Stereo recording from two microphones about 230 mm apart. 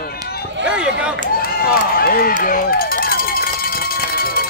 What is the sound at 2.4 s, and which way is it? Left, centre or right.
Run, left.